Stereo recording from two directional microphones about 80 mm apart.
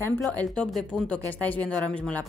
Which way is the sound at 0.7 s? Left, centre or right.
Centre.